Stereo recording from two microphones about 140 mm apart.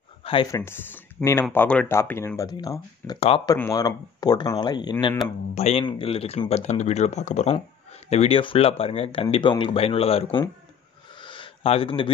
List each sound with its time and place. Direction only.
0.2 s a sound: 40° left (ahead or behind)
0.5 s speech: 15° left (ahead or behind)
3.2 s speech: 45° left (ahead or behind)
3.5 s speech: 25° left (ahead or behind)
5.5 s speech: 50° left (ahead or behind)
11.1 s a sound: 35° left (ahead or behind)